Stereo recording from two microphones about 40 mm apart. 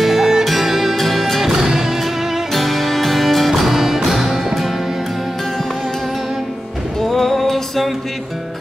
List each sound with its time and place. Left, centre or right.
0.0 s music: centre
2.5 s music: centre
7.0 s music: centre